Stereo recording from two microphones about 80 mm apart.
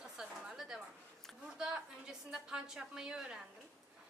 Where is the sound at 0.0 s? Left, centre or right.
Centre.